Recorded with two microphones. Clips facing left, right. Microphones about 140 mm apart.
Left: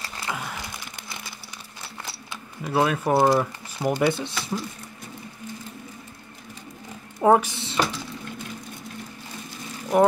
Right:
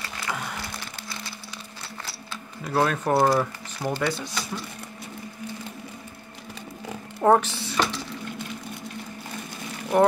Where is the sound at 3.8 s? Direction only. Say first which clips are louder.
Left 4 dB; 15° left (ahead or behind).